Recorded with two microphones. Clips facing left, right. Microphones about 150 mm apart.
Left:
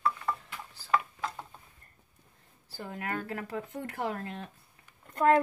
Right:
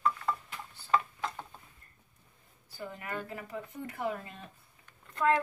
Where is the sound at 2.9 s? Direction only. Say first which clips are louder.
Left 5 dB; 70° left (ahead or behind).